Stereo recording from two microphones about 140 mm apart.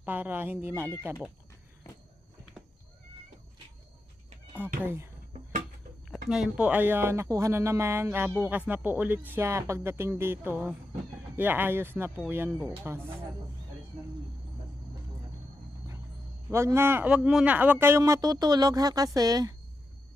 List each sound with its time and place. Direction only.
0.0 s speech: 15° right (ahead or behind)
4.8 s speech: 20° right (ahead or behind)
6.0 s speech: centre (ahead or behind); by 13.0 s 20° right (ahead or behind)
16.4 s a man's voice: 20° right (ahead or behind)